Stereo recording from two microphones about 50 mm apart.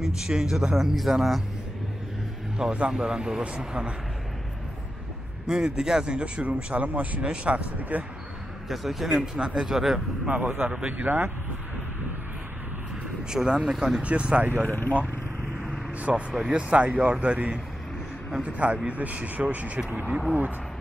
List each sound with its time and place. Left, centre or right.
0.0 s a man's voice: centre
2.5 s a man's voice: centre
5.5 s speech: centre
8.6 s a man's voice: centre
10.2 s speech: right
13.3 s a man's voice: centre
14.0 s speech: right
14.6 s speech: left
16.0 s speech: right